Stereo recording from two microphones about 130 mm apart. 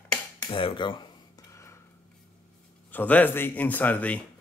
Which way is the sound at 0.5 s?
40° left (ahead or behind).